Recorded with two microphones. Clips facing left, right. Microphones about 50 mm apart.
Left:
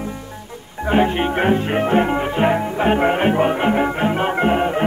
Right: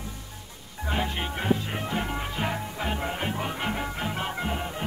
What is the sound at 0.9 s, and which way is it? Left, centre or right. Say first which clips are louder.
Music: left 13 dB; left.